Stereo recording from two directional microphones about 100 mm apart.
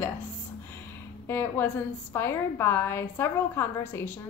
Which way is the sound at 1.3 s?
20° left (ahead or behind).